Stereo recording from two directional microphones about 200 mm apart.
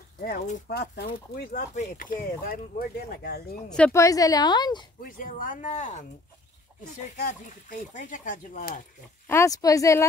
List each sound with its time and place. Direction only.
0.2 s speech: 50° left (ahead or behind)
3.7 s a woman's voice: 10° left (ahead or behind)
5.0 s speech: 45° left (ahead or behind)
9.3 s a woman's voice: 15° left (ahead or behind)